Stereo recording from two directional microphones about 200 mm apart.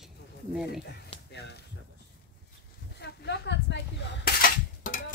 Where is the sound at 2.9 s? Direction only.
55° left (ahead or behind).